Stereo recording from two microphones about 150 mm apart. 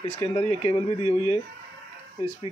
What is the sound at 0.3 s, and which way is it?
Speech, 35° left (ahead or behind).